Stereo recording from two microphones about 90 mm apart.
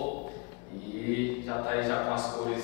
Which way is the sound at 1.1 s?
20° left (ahead or behind).